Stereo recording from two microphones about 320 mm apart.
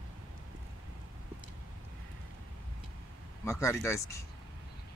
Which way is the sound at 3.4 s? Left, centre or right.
Centre.